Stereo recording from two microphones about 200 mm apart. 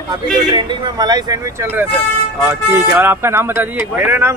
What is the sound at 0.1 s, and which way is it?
Speech, 25° right (ahead or behind).